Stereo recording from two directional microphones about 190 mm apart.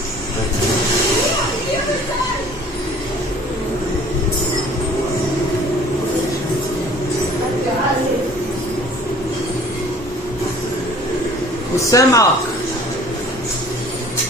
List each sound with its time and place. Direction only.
11.9 s speech: 15° left (ahead or behind)